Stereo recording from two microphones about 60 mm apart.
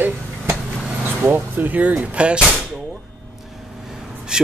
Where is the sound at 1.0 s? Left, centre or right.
Right.